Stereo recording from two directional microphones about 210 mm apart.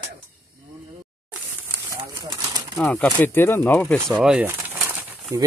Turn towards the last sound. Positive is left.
turn(degrees=-10)  # may be behind; listen again after turning